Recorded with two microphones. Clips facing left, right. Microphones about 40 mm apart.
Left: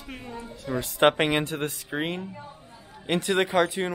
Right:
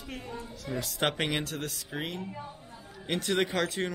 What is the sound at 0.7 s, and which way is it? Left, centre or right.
Speech, left.